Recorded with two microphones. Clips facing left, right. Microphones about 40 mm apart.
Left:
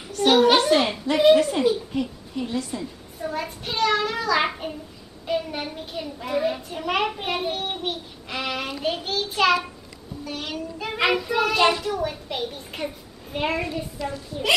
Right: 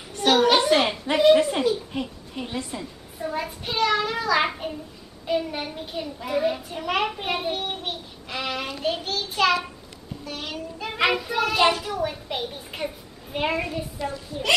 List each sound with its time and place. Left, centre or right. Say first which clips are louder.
0.2 s a sound: left 2 dB; centre
1.3 s a woman's voice: left 1 dB; centre
2.8 s a child's voice: left 1 dB; centre